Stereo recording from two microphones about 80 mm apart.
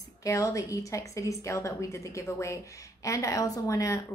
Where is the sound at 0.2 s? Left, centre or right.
Left.